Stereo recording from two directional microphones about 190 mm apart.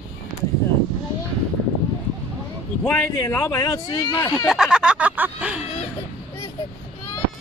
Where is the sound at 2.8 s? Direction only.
10° left (ahead or behind).